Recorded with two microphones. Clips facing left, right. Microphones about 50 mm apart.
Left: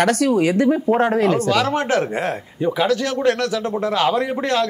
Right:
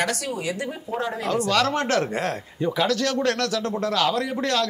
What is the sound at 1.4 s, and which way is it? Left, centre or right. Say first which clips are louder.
Speech: left 3 dB; centre.